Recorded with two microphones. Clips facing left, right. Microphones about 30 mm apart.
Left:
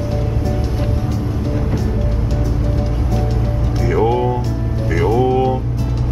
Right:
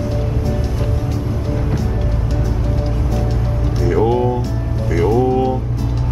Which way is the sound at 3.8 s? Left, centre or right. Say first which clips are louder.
Even; centre.